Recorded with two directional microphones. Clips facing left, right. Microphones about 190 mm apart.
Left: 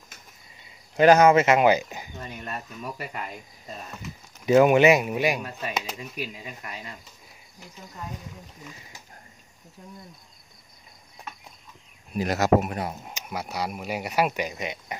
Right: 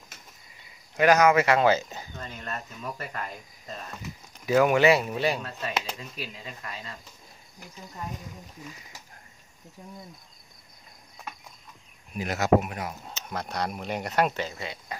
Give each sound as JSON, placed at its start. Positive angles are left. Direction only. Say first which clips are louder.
{"t": 0.9, "sound": "speech", "louder": "left 4 dB", "side_deg": 30}
{"t": 12.1, "sound": "speech", "louder": "left 2 dB", "side_deg": 40}
{"t": 13.0, "sound": "speech", "louder": "left 1 dB", "side_deg": 10}